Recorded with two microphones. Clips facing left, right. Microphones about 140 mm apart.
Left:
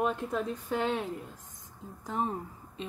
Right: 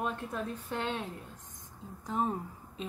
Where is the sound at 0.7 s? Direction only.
5° left (ahead or behind).